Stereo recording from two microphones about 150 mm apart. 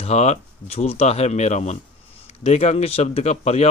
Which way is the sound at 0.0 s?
45° left (ahead or behind).